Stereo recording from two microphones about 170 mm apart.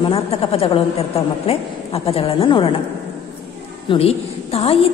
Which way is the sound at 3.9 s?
35° left (ahead or behind).